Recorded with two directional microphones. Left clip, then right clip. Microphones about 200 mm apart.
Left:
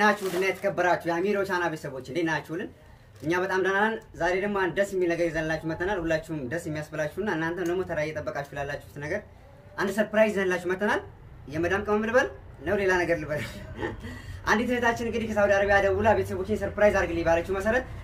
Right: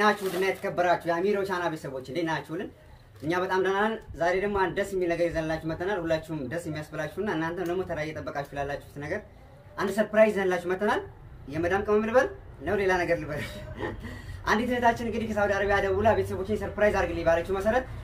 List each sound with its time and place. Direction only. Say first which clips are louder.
0.0 s speech: left 1 dB; 15° left (ahead or behind)